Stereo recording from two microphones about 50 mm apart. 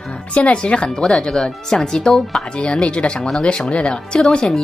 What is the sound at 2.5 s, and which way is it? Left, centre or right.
Speech, left.